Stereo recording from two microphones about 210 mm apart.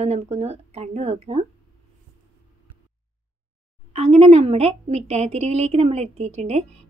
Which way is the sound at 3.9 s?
30° right (ahead or behind).